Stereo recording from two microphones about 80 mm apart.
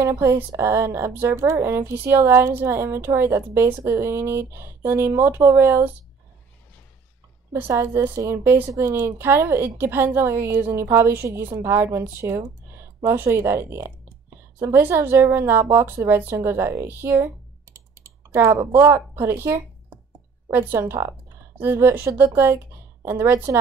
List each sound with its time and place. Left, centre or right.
0.2 s speech: right
7.7 s speech: right